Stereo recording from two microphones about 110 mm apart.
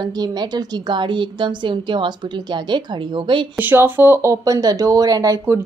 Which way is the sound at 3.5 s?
20° right (ahead or behind).